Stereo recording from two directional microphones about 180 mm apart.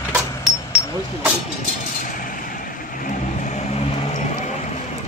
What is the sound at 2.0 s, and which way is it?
Vehicle, 50° left (ahead or behind).